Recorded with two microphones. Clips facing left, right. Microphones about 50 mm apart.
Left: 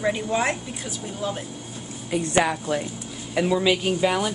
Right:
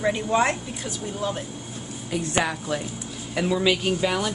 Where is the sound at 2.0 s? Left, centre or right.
Centre.